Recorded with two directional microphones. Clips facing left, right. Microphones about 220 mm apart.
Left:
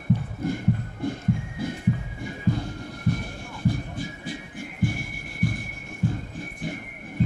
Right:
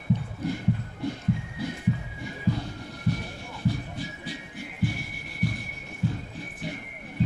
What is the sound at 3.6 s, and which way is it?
Music, 50° left (ahead or behind).